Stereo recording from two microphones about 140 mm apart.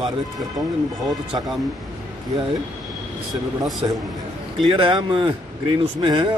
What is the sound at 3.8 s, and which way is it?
Speech, 30° right (ahead or behind).